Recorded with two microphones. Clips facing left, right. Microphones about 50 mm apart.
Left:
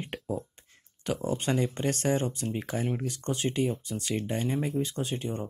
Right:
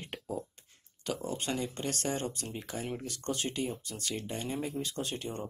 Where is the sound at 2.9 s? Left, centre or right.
Left.